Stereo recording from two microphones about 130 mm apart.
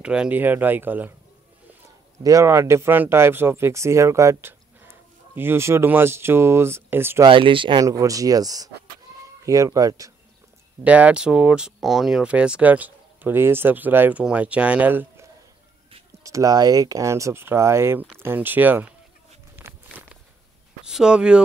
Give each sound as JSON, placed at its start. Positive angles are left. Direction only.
{"t": 0.0, "sound": "speech", "side_deg": -5}
{"t": 2.2, "sound": "speech", "side_deg": -25}
{"t": 7.2, "sound": "speech", "side_deg": -40}
{"t": 7.8, "sound": "speech", "side_deg": -25}
{"t": 10.8, "sound": "speech", "side_deg": -10}
{"t": 16.3, "sound": "speech", "side_deg": -25}
{"t": 19.5, "sound": "walk", "side_deg": -15}
{"t": 20.8, "sound": "speech", "side_deg": -5}